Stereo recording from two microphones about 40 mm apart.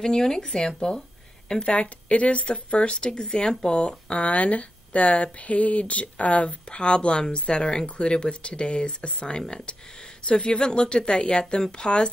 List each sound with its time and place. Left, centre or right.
0.0 s speech: centre
1.7 s speech: left